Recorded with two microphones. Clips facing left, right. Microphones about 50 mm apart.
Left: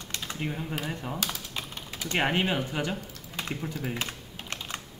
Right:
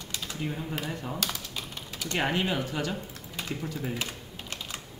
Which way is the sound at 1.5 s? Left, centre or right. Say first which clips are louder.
Left 1 dB; left.